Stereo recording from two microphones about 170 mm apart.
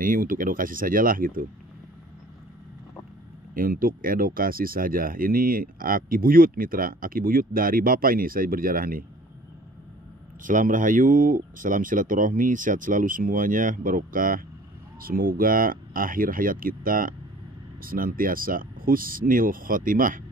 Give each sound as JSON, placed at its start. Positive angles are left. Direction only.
{"t": 0.0, "sound": "speech", "side_deg": -55}
{"t": 3.5, "sound": "speech", "side_deg": -55}
{"t": 10.4, "sound": "speech", "side_deg": -50}